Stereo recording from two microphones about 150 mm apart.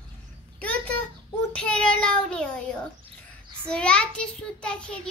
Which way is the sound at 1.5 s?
5° left (ahead or behind).